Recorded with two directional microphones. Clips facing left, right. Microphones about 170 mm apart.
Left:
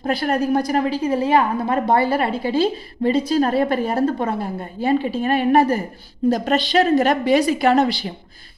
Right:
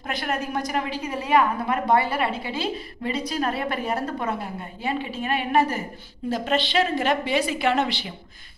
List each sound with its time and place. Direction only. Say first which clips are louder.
0.0 s a woman's voice: left 8 dB; 35° left (ahead or behind)